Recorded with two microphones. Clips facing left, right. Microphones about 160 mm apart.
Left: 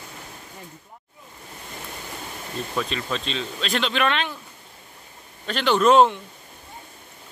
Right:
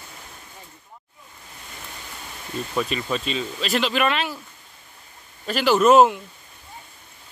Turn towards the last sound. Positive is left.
turn(degrees=-5)  # may be behind; listen again after turning